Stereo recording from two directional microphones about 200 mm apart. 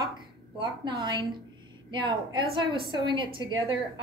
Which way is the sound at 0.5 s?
25° right (ahead or behind).